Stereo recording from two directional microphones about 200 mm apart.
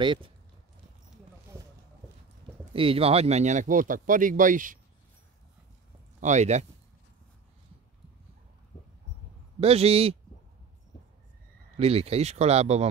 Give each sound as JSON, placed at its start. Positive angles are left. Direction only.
{"t": 0.0, "sound": "speech", "side_deg": -25}
{"t": 2.7, "sound": "speech", "side_deg": -25}
{"t": 6.2, "sound": "speech", "side_deg": -35}
{"t": 9.6, "sound": "speech", "side_deg": -30}
{"t": 11.7, "sound": "speech", "side_deg": -30}